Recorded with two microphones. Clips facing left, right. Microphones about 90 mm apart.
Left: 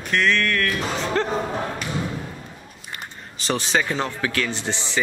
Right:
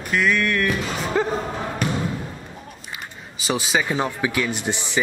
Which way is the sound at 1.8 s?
50° right (ahead or behind).